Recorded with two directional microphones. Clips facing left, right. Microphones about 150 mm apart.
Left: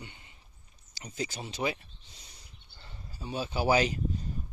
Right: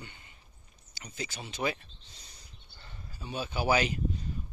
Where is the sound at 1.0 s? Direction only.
35° left (ahead or behind).